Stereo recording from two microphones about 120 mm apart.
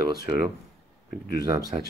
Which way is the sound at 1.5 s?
30° right (ahead or behind).